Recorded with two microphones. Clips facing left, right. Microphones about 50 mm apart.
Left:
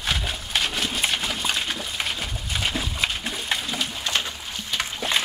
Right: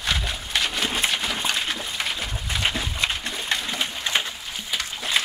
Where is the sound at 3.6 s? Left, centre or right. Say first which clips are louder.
Right 1 dB; centre.